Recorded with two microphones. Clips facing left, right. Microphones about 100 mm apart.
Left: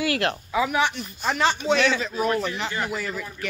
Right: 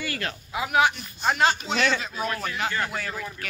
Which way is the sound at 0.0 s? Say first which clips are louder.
Left 8 dB; 80° left.